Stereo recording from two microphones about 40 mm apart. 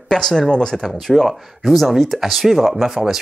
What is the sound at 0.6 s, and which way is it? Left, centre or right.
Speech, centre.